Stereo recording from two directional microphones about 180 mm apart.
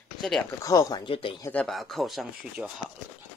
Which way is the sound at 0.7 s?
20° left (ahead or behind).